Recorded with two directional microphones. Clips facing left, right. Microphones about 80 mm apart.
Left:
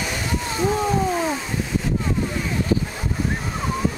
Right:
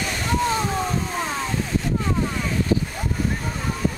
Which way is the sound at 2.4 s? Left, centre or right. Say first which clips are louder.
Even; centre.